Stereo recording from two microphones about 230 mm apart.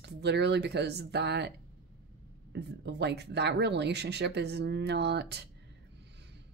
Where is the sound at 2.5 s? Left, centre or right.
Right.